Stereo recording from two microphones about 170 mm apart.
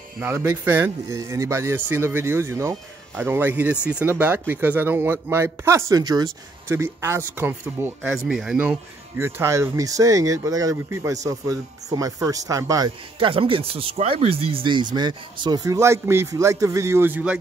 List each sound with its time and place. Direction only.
0.2 s speech: 10° right (ahead or behind)
13.2 s speech: 30° right (ahead or behind); by 17.4 s 10° right (ahead or behind)